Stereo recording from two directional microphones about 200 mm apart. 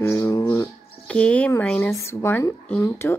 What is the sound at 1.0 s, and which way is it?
Speech, 5° left (ahead or behind).